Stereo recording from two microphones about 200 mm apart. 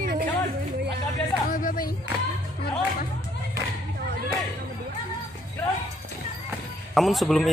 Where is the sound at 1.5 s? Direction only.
45° left (ahead or behind).